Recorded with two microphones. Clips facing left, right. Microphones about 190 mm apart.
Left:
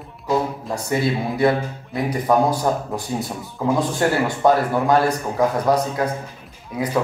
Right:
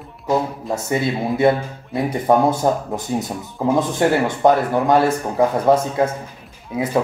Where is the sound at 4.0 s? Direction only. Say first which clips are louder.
Right 3 dB; 20° right (ahead or behind).